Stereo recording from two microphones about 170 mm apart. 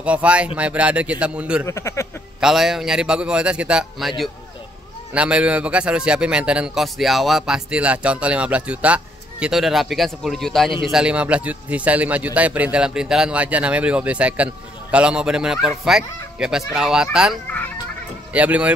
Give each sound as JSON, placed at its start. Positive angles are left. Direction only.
{"t": 0.0, "sound": "speech", "side_deg": -5}
{"t": 1.7, "sound": "speech", "side_deg": 15}
{"t": 2.4, "sound": "a man's voice", "side_deg": 0}
{"t": 5.1, "sound": "a man's voice", "side_deg": -5}